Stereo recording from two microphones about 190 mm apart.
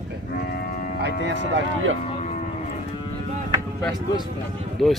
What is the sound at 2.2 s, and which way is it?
Cattle, 40° left (ahead or behind).